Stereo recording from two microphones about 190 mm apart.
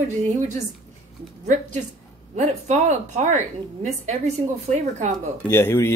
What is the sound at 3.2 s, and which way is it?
A woman's voice, 40° right (ahead or behind).